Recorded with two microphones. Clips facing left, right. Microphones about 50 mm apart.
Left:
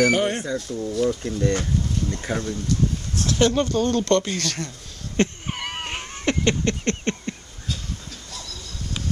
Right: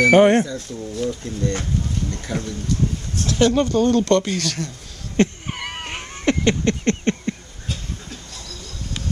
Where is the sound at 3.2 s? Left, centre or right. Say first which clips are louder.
Right 3 dB; centre.